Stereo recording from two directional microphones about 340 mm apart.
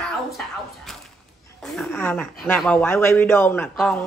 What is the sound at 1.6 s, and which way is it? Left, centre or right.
Speech, centre.